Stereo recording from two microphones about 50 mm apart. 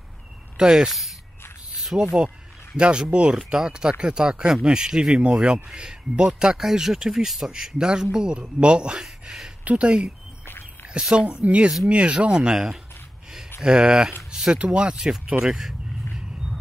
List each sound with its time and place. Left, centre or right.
0.6 s speech: centre
1.9 s speech: right
10.4 s a sound: left
10.9 s speech: centre
14.3 s a sound: centre
14.6 s speech: right